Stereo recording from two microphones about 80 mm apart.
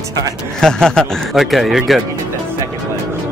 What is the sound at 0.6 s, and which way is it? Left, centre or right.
Speech, centre.